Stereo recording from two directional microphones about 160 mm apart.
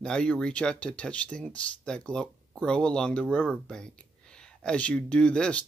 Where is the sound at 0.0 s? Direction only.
5° left (ahead or behind).